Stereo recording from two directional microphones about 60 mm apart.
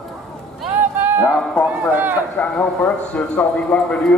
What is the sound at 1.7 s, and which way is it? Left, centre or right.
Speech, right.